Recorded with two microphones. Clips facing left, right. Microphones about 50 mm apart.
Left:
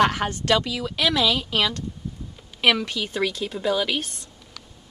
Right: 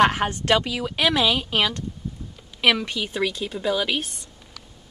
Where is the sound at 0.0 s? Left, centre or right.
Right.